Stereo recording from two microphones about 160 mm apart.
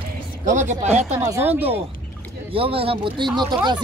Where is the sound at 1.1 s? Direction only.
15° right (ahead or behind).